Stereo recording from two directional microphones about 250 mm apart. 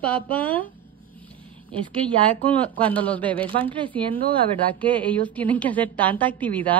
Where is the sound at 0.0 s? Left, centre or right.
Centre.